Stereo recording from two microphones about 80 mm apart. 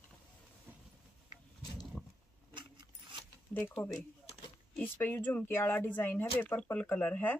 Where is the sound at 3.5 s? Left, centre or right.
Left.